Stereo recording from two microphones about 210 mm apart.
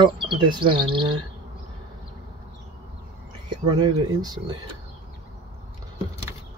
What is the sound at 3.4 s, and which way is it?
Speech, 20° right (ahead or behind).